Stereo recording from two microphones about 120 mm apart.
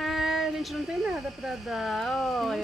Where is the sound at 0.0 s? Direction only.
Centre (ahead or behind).